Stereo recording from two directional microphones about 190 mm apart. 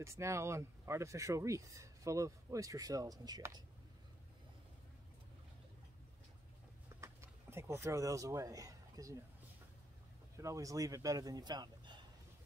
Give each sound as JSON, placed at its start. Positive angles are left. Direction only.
{"t": 0.0, "sound": "speech", "side_deg": -15}
{"t": 7.0, "sound": "a sound", "side_deg": -15}
{"t": 10.3, "sound": "speech", "side_deg": -15}